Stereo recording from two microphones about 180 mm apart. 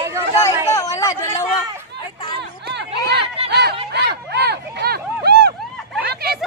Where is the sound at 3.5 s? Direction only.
65° right (ahead or behind).